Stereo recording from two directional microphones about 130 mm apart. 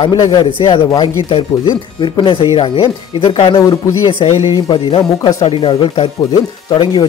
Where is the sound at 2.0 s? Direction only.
40° left (ahead or behind).